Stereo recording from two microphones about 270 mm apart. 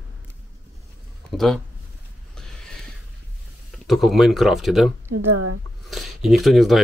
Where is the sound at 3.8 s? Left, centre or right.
Centre.